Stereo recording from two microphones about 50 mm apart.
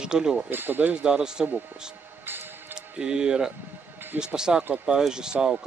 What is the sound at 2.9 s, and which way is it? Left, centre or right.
Speech, centre.